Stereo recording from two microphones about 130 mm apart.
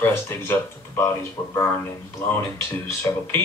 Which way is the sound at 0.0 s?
20° left (ahead or behind).